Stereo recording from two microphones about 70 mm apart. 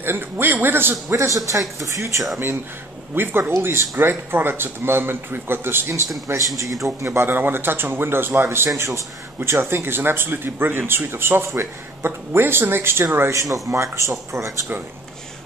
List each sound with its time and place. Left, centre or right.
0.0 s a man's voice: right
1.0 s a man's voice: right
3.2 s a man's voice: right
7.1 s a man's voice: right
13.4 s a man's voice: right